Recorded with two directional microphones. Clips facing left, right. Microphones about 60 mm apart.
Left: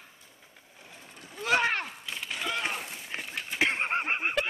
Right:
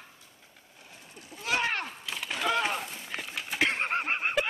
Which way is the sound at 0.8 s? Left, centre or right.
Left.